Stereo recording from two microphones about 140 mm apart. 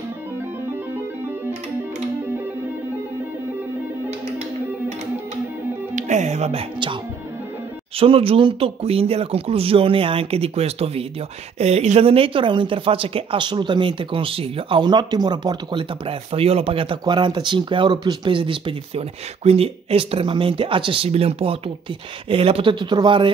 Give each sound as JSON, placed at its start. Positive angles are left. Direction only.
{"t": 5.9, "sound": "speech", "side_deg": -60}
{"t": 8.0, "sound": "speech", "side_deg": -40}